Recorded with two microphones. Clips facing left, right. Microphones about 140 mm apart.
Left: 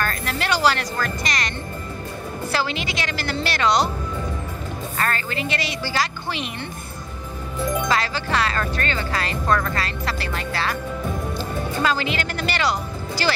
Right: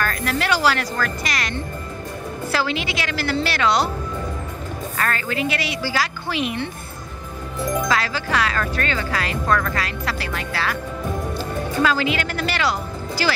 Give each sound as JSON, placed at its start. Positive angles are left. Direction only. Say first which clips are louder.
{"t": 0.0, "sound": "speech", "louder": "right 2 dB", "side_deg": 0}
{"t": 2.5, "sound": "speech", "louder": "right 2 dB", "side_deg": 0}
{"t": 5.0, "sound": "speech", "louder": "right 2 dB", "side_deg": -5}
{"t": 7.6, "sound": "speech", "louder": "right 1 dB", "side_deg": 5}
{"t": 9.5, "sound": "speech", "louder": "even", "side_deg": 20}
{"t": 9.8, "sound": "speech", "louder": "right 1 dB", "side_deg": -10}
{"t": 11.3, "sound": "speech", "louder": "right 2 dB", "side_deg": 0}